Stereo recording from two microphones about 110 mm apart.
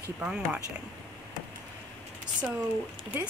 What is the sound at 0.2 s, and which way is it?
Speech, 10° right (ahead or behind).